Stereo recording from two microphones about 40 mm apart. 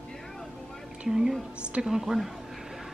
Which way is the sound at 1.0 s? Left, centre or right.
Centre.